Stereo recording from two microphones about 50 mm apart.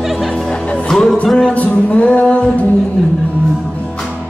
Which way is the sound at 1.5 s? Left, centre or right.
Left.